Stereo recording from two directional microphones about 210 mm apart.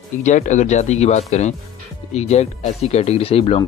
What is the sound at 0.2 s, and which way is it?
Speech, 35° left (ahead or behind).